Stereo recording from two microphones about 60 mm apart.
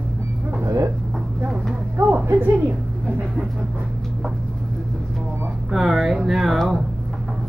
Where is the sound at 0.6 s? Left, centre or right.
Right.